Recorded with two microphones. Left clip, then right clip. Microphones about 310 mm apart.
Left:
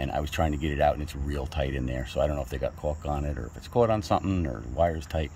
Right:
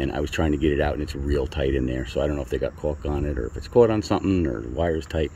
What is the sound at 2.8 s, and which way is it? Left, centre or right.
Speech, left.